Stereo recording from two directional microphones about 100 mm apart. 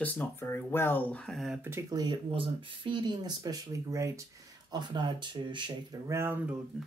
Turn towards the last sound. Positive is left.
turn(degrees=-25)  # may be behind; listen again after turning